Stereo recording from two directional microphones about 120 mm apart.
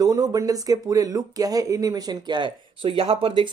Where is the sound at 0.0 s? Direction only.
30° right (ahead or behind).